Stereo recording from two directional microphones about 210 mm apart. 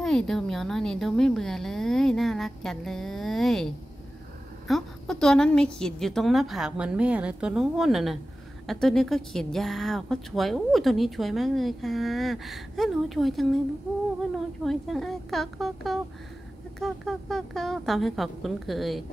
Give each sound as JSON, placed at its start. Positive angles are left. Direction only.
{"t": 0.0, "sound": "speech", "side_deg": 0}
{"t": 14.6, "sound": "speech", "side_deg": 0}